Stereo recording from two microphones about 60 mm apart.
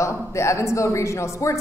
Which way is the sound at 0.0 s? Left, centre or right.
Left.